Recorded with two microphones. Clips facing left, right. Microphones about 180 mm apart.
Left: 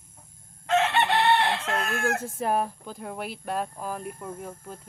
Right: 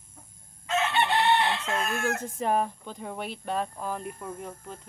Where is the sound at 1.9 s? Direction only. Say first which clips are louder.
Left 2 dB; 5° left (ahead or behind).